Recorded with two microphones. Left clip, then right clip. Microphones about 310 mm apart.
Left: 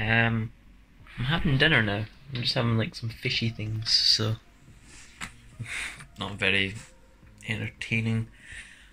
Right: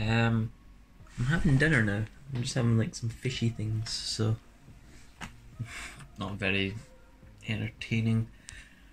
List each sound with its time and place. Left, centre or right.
0.0 s speech: centre
1.7 s speech: left
2.4 s speech: centre
3.8 s speech: centre